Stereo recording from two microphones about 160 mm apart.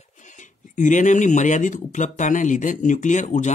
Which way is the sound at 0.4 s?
50° left (ahead or behind).